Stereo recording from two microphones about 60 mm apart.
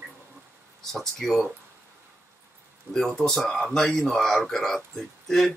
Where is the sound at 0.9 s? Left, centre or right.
Centre.